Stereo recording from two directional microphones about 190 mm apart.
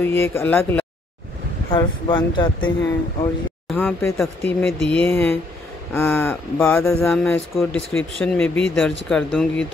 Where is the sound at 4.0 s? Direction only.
15° left (ahead or behind).